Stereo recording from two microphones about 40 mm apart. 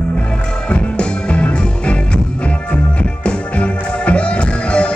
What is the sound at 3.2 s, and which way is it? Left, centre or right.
Music, left.